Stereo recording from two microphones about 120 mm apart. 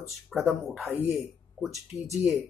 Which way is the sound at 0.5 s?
Centre (ahead or behind).